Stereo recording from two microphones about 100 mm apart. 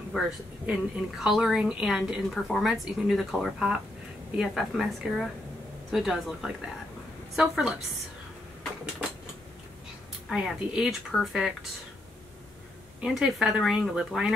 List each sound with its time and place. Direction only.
0.1 s a woman's voice: 5° right (ahead or behind)
10.3 s a woman's voice: 5° right (ahead or behind)
13.0 s a woman's voice: 5° right (ahead or behind)